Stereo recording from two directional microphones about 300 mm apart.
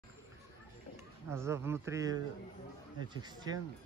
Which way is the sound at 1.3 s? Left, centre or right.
Centre.